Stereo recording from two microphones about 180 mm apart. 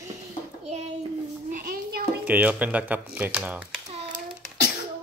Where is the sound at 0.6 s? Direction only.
40° right (ahead or behind).